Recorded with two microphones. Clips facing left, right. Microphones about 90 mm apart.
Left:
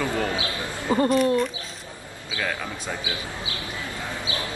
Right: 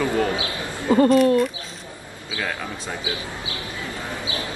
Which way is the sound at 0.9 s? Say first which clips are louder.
Right 5 dB; 25° right (ahead or behind).